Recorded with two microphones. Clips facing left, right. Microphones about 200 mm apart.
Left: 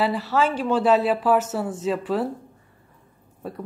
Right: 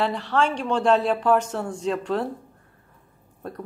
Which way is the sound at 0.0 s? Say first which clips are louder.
Left 1 dB; 5° left (ahead or behind).